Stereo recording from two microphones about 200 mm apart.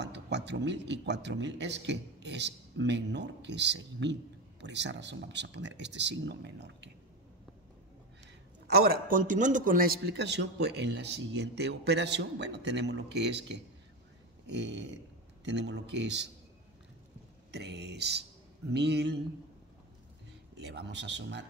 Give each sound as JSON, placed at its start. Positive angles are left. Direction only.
{"t": 0.0, "sound": "speech", "side_deg": -60}
{"t": 8.6, "sound": "speech", "side_deg": -50}
{"t": 17.5, "sound": "speech", "side_deg": -55}
{"t": 20.5, "sound": "speech", "side_deg": -60}